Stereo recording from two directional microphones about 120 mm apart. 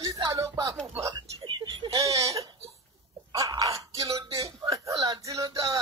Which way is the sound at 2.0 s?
25° right (ahead or behind).